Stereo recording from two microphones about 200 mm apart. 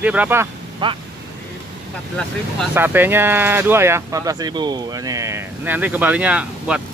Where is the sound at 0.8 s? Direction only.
25° right (ahead or behind).